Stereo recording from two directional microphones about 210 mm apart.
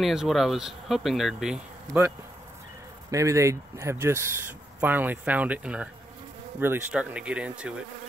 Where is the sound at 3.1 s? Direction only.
15° right (ahead or behind).